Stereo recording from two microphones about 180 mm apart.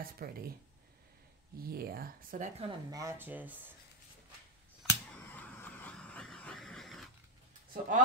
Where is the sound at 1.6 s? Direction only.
55° right (ahead or behind).